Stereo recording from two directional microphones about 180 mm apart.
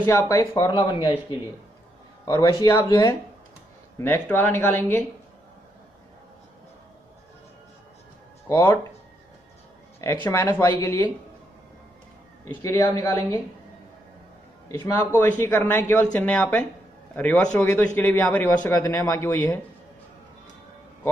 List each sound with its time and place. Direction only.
0.3 s a man's voice: 20° left (ahead or behind)
2.2 s speech: 20° left (ahead or behind)
8.5 s speech: 15° left (ahead or behind)
9.9 s speech: 15° left (ahead or behind)
12.6 s speech: 20° left (ahead or behind)
14.7 s speech: 15° left (ahead or behind)